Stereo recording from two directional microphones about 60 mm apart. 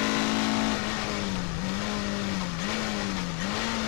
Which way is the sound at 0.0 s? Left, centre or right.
Left.